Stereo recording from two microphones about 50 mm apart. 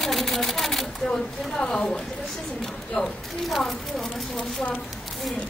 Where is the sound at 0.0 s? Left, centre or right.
Centre.